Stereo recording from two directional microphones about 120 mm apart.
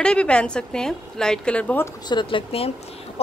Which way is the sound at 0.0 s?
10° left (ahead or behind).